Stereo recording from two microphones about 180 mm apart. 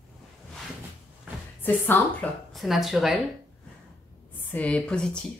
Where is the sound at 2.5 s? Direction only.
Centre (ahead or behind).